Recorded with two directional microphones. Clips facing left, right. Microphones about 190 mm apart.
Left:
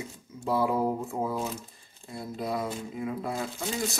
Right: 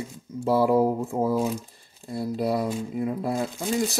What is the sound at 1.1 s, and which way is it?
Speech, 40° right (ahead or behind).